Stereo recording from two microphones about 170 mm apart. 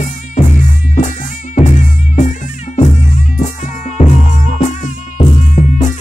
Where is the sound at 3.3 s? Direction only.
45° left (ahead or behind).